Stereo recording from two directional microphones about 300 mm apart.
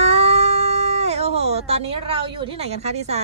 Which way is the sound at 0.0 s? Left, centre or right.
Centre.